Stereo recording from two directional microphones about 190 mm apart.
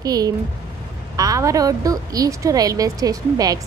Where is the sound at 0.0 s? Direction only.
20° right (ahead or behind).